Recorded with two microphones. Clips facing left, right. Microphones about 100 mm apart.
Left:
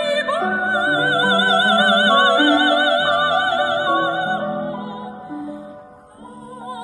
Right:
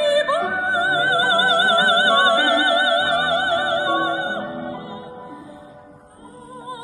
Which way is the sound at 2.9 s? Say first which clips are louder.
Left 2 dB; 20° left (ahead or behind).